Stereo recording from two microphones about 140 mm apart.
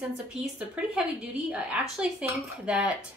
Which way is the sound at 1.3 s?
10° right (ahead or behind).